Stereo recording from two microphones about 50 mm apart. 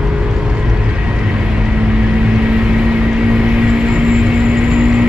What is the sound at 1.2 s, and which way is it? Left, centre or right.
Vehicle, centre.